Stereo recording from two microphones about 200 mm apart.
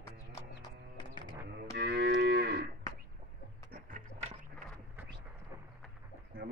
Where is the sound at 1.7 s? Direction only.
60° right (ahead or behind).